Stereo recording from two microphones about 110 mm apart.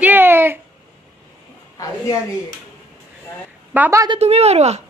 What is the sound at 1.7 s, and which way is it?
Speech, 30° left (ahead or behind).